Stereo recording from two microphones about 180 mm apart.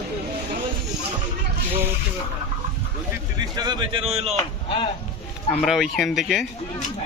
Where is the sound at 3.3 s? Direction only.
20° right (ahead or behind).